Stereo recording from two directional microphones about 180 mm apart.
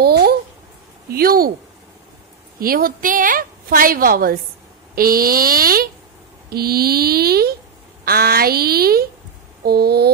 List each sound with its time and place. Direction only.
0.0 s a sound: 60° right (ahead or behind)
1.1 s a woman's voice: 55° right (ahead or behind)
2.6 s a woman's voice: 55° right (ahead or behind)